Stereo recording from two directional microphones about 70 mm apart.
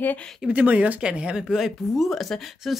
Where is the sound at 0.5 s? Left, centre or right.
Right.